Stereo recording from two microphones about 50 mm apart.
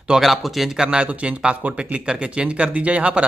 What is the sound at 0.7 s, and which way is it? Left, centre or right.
Speech, centre.